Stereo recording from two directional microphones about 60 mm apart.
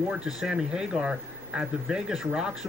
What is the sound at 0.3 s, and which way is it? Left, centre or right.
Speech, centre.